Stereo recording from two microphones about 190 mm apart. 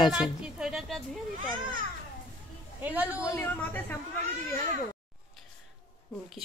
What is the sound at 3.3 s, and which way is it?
Speech, 10° left (ahead or behind).